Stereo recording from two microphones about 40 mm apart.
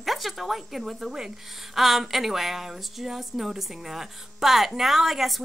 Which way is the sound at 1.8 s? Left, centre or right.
Centre.